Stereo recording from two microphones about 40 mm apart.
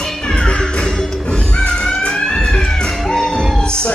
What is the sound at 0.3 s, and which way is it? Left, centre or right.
Music, left.